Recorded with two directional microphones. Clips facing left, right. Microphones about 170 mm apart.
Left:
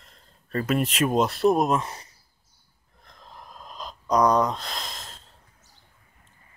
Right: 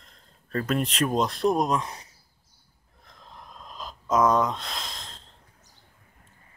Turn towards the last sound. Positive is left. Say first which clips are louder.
# left 1 dB
turn(degrees=5)  # may be behind; listen again after turning